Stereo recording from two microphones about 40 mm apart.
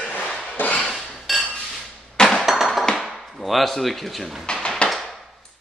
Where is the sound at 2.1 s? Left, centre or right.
Centre.